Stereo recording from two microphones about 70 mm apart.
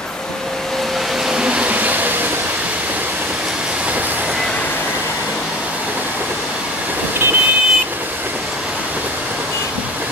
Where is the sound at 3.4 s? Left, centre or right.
Centre.